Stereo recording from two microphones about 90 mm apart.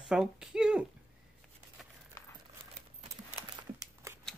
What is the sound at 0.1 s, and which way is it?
Speech, 10° right (ahead or behind).